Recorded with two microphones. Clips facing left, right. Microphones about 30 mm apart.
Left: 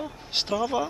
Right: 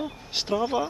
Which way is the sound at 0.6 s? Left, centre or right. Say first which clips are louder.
Right 1 dB; right.